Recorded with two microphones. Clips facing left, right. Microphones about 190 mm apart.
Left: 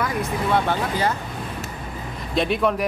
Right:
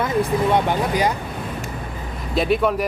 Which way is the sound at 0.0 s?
25° right (ahead or behind).